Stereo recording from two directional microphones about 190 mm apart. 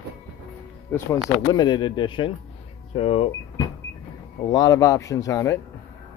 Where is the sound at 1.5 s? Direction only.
25° left (ahead or behind).